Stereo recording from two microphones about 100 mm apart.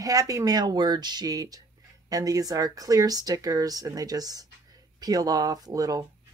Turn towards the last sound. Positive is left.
turn(degrees=-35)  # may be behind; listen again after turning